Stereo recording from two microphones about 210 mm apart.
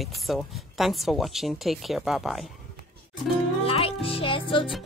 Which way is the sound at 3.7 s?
25° left (ahead or behind).